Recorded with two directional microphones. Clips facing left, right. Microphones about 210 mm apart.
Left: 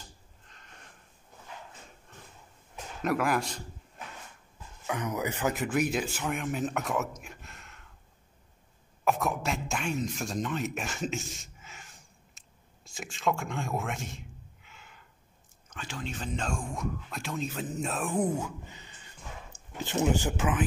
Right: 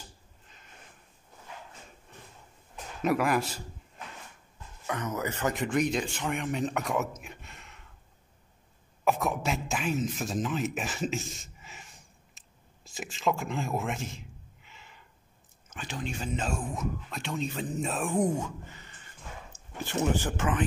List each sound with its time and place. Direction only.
2.7 s speech: centre (ahead or behind)
4.8 s a man's voice: 10° left (ahead or behind)
9.0 s a sound: centre (ahead or behind)
15.7 s speech: 15° right (ahead or behind); by 18.5 s centre (ahead or behind)
18.7 s a sound: 15° left (ahead or behind)
19.8 s speech: 15° left (ahead or behind)